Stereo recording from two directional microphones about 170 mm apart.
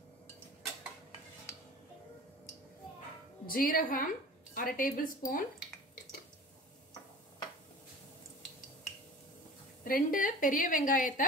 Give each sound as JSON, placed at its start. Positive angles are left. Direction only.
{"t": 3.4, "sound": "a woman's voice", "side_deg": 55}
{"t": 9.8, "sound": "a woman's voice", "side_deg": 55}